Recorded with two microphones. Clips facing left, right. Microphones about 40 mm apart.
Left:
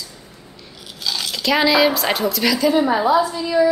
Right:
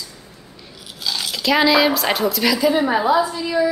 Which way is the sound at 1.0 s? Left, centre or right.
Centre.